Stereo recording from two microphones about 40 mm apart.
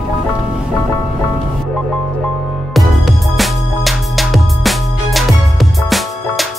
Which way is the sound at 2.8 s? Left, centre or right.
Centre.